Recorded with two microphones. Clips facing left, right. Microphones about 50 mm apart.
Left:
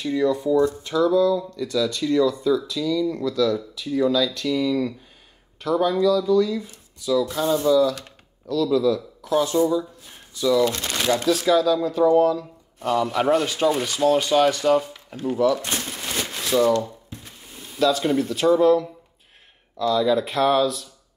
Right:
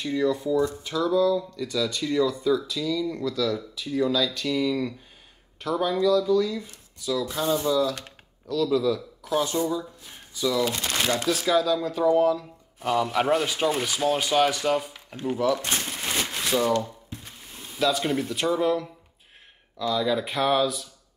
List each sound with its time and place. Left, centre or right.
0.0 s speech: centre
15.1 s a sound: centre
19.8 s speech: centre